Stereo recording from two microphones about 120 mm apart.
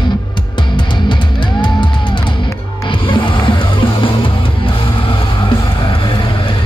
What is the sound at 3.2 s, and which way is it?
Music, 45° left (ahead or behind).